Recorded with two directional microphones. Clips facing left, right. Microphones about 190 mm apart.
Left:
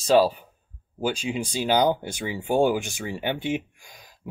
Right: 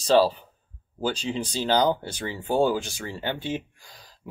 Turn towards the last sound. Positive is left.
turn(degrees=15)  # may be behind; listen again after turning